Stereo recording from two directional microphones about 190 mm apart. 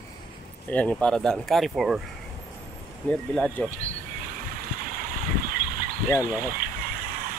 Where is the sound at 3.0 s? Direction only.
5° left (ahead or behind).